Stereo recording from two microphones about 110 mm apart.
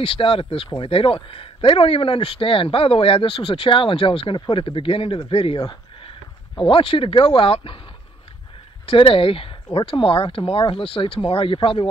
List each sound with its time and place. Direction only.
0.0 s speech: 55° left (ahead or behind)
6.6 s speech: 55° left (ahead or behind)
8.8 s speech: 50° left (ahead or behind)